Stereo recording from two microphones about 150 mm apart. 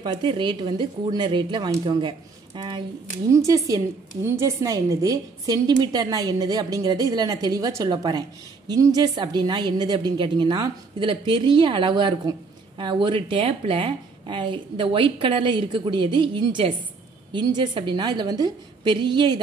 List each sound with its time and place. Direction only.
0.0 s a woman's voice: 30° right (ahead or behind)